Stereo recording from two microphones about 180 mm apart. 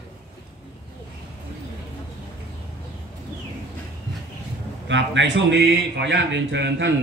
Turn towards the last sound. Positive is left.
turn(degrees=-80)